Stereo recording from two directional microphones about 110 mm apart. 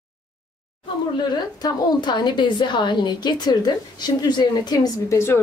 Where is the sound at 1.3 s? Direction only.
35° left (ahead or behind).